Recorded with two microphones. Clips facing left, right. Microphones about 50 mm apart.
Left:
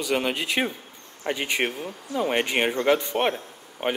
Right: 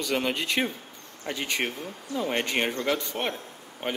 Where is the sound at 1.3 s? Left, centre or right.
Left.